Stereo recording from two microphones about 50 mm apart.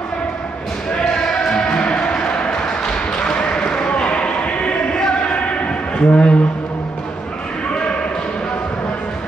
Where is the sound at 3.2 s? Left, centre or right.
Left.